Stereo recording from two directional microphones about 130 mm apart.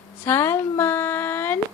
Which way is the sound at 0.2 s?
20° left (ahead or behind).